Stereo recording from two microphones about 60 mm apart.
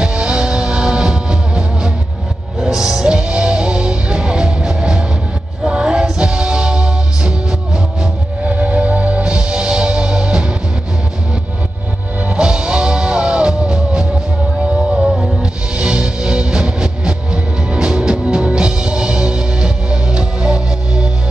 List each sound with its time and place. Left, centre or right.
0.0 s music: centre
12.3 s music: centre